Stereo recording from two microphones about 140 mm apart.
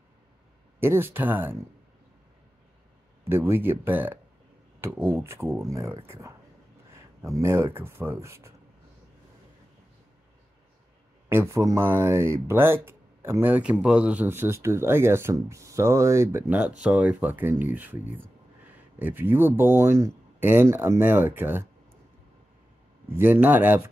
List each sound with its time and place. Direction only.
0.7 s speech: 15° right (ahead or behind)
3.3 s speech: 15° right (ahead or behind)
11.2 s speech: 20° right (ahead or behind)
23.1 s speech: 15° right (ahead or behind)